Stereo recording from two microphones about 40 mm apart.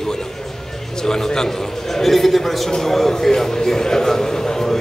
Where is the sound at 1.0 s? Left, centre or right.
Centre.